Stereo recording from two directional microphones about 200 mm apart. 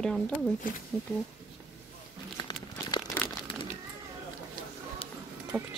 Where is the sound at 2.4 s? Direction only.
20° left (ahead or behind).